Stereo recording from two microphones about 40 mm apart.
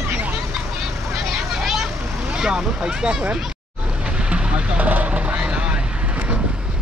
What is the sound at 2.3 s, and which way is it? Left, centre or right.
Speech, right.